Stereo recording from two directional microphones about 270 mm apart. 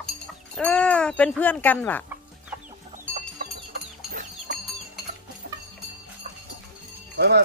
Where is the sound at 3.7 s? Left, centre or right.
Right.